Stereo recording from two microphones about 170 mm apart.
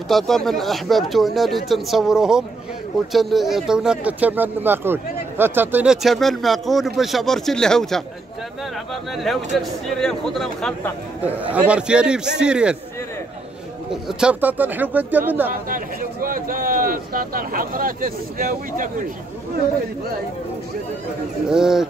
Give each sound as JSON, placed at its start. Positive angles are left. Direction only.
{"t": 0.1, "sound": "speech", "side_deg": 0}
{"t": 9.1, "sound": "speech", "side_deg": 0}
{"t": 14.0, "sound": "speech", "side_deg": -5}
{"t": 15.7, "sound": "speech", "side_deg": -55}
{"t": 21.5, "sound": "speech", "side_deg": -5}